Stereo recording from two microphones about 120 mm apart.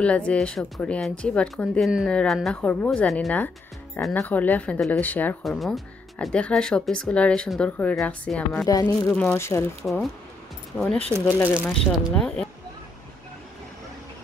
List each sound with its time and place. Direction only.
0.0 s speech: 10° left (ahead or behind)
3.3 s speech: 15° left (ahead or behind)
4.7 s speech: centre (ahead or behind)
5.0 s speech: 15° left (ahead or behind)
5.6 s speech: centre (ahead or behind)
8.6 s speech: 25° left (ahead or behind)
9.1 s speech: 10° left (ahead or behind)
9.4 s speech: 25° left (ahead or behind)
10.7 s speech: 10° left (ahead or behind)
11.2 s speech: 20° left (ahead or behind)
11.7 s speech: 5° left (ahead or behind)